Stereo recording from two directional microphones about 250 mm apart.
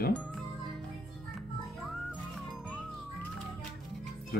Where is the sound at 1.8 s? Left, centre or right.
Centre.